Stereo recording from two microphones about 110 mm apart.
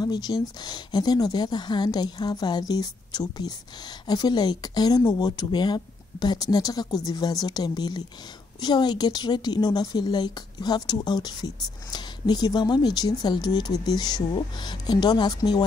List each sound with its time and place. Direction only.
0.0 s a woman's voice: 40° left (ahead or behind)